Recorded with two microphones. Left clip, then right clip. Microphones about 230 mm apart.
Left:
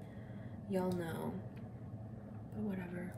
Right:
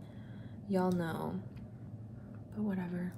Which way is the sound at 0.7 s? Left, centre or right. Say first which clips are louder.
Right 4 dB; centre.